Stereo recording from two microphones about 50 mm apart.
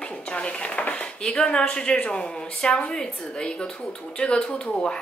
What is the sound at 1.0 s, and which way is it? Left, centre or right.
A woman's voice, centre.